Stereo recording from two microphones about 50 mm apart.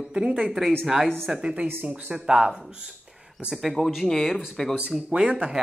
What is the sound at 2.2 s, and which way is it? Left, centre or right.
Speech, centre.